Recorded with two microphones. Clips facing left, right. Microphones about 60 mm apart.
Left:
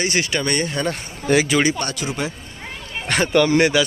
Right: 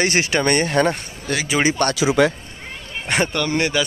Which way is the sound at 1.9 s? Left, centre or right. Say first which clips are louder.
Right 9 dB; right.